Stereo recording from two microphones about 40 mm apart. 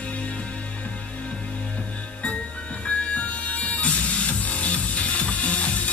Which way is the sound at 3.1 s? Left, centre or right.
Left.